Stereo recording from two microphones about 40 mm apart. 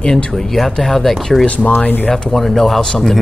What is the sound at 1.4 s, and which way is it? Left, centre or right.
Speech, left.